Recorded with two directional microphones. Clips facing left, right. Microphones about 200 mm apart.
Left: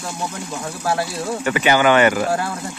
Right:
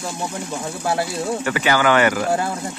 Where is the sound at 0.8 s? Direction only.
25° right (ahead or behind).